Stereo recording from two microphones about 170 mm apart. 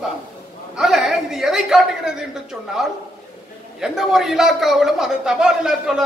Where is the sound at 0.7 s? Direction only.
Centre (ahead or behind).